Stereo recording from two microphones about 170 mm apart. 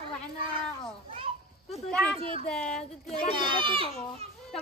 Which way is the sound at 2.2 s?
35° right (ahead or behind).